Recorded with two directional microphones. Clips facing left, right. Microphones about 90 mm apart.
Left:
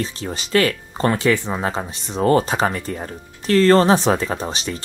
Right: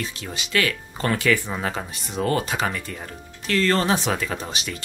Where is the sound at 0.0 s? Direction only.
35° left (ahead or behind).